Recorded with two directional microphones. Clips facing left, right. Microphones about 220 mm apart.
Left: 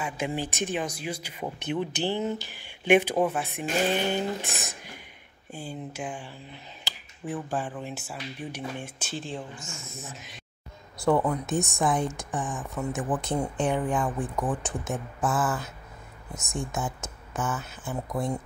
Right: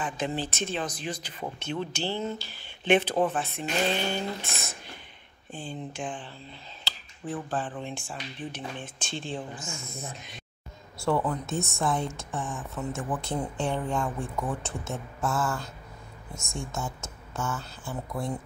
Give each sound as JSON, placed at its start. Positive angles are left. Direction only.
{"t": 0.0, "sound": "speech", "side_deg": 10}
{"t": 11.0, "sound": "speech", "side_deg": 15}